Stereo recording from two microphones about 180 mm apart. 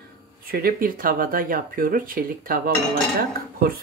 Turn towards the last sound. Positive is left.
turn(degrees=-55)  # may be behind; listen again after turning